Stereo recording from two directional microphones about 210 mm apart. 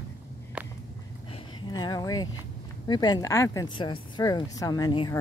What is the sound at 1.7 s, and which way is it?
Speech, 20° left (ahead or behind).